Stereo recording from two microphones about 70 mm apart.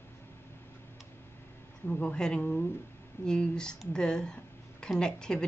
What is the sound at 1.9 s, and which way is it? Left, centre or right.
Speech, centre.